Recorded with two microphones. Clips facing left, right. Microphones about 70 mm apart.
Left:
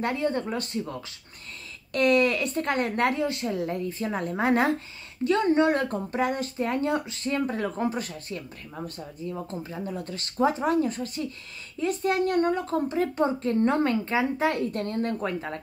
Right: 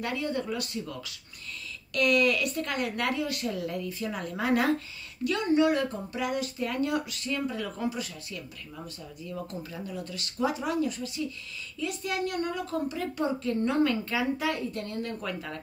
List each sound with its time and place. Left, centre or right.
0.0 s speech: left
14.5 s speech: left